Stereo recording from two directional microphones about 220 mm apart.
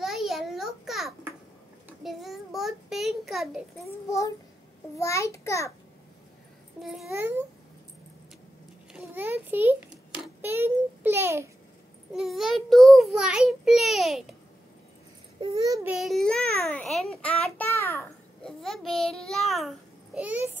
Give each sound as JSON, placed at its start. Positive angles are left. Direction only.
{"t": 0.0, "sound": "a sound", "side_deg": 0}
{"t": 2.0, "sound": "child singing", "side_deg": 0}
{"t": 4.9, "sound": "a child's voice", "side_deg": 15}
{"t": 6.8, "sound": "a child's voice", "side_deg": 0}
{"t": 8.9, "sound": "a child's voice", "side_deg": -10}
{"t": 15.4, "sound": "a child's voice", "side_deg": -15}
{"t": 15.9, "sound": "a child's voice", "side_deg": 0}